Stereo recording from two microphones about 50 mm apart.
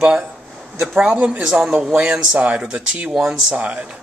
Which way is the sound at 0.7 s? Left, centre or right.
Centre.